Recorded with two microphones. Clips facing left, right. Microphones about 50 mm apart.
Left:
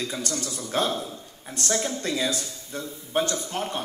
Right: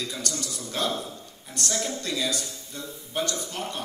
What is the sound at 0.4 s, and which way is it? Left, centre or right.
A man's voice, left.